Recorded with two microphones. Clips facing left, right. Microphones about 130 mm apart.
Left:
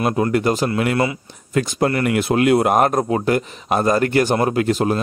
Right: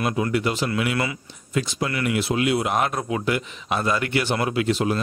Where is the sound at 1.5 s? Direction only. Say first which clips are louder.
Left 7 dB; 50° left (ahead or behind).